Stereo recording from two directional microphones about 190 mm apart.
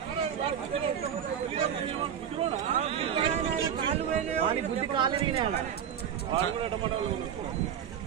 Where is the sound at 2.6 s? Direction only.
35° right (ahead or behind).